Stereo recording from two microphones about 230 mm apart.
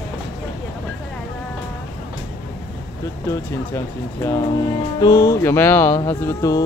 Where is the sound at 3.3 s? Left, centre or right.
Centre.